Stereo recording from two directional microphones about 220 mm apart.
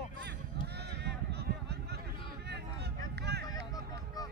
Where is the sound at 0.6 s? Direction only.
50° right (ahead or behind).